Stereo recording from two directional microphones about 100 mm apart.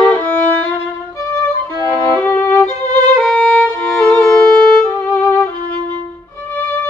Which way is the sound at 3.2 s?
10° left (ahead or behind).